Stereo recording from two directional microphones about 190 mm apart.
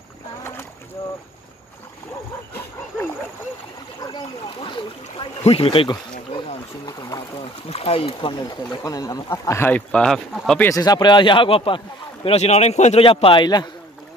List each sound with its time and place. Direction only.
4.0 s a sound: 25° left (ahead or behind)
7.6 s speech: 30° left (ahead or behind); by 10.7 s centre (ahead or behind)
10.7 s speech: 20° left (ahead or behind)